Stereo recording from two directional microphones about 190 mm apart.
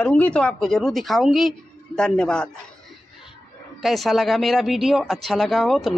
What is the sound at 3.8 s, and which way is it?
Speech, centre (ahead or behind).